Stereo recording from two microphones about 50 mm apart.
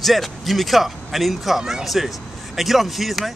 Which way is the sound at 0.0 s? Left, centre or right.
Centre.